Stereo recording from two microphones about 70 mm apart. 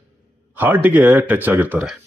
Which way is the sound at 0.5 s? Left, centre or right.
Right.